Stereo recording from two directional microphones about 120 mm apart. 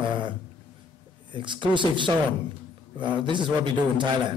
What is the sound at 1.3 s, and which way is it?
Speech, 40° right (ahead or behind).